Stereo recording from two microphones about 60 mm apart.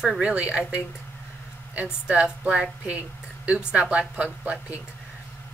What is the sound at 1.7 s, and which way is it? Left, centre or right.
A woman's voice, right.